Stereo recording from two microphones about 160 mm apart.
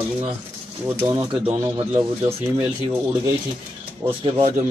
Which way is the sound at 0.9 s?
15° right (ahead or behind).